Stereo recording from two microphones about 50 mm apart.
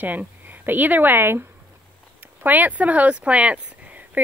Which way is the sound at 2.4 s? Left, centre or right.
Right.